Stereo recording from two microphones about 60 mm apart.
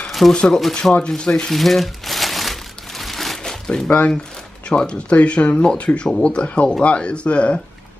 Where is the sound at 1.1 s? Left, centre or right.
Centre.